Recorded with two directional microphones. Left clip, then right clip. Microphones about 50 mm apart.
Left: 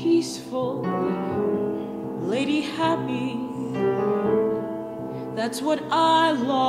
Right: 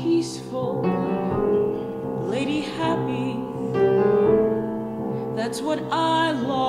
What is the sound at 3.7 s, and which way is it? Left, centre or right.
Music, centre.